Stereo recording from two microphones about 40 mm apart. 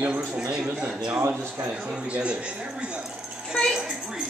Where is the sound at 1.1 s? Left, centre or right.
Right.